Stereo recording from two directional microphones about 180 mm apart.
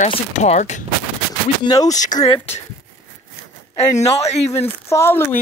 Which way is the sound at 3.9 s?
35° left (ahead or behind).